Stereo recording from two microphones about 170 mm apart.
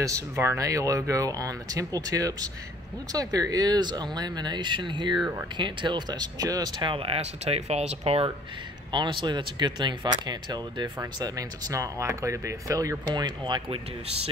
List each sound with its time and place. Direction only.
0.0 s speech: 15° right (ahead or behind); by 14.3 s 30° right (ahead or behind)